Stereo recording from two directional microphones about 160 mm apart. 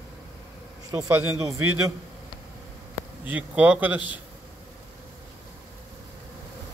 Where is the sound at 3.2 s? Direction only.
10° right (ahead or behind).